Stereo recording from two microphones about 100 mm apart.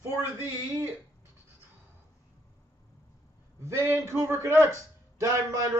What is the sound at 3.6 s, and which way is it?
A man's voice, 25° right (ahead or behind).